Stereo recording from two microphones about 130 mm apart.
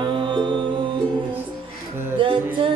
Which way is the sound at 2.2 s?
40° right (ahead or behind).